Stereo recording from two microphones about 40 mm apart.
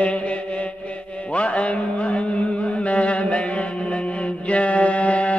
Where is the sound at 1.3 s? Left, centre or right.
Left.